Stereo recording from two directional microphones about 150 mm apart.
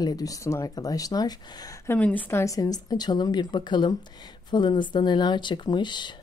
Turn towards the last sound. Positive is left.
turn(degrees=30)  # may be behind; listen again after turning